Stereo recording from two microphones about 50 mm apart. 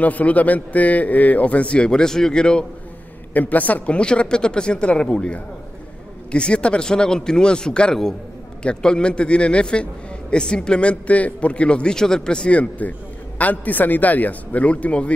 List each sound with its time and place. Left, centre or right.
0.0 s a man's voice: left
3.3 s a man's voice: left